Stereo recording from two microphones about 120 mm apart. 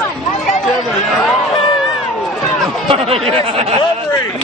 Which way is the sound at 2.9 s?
55° right (ahead or behind).